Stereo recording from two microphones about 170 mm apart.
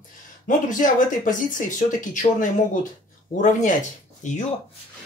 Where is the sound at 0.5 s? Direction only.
50° left (ahead or behind).